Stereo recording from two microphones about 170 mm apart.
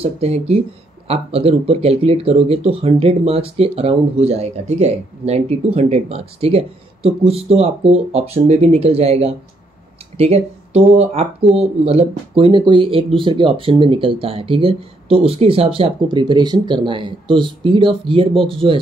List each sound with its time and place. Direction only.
0.0 s speech: 35° right (ahead or behind)